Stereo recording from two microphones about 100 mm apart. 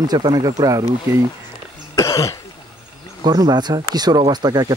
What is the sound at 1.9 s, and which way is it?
Cough, 30° left (ahead or behind).